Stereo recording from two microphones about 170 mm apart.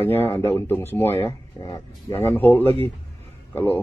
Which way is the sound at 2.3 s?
10° left (ahead or behind).